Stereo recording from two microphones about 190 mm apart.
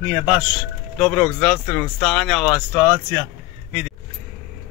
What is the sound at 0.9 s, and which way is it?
Speech, 5° left (ahead or behind).